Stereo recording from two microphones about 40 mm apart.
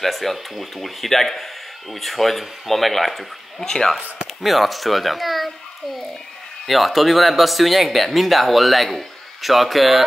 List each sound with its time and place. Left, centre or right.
0.0 s speech: centre
3.6 s speech: centre
4.4 s speech: centre
6.7 s speech: centre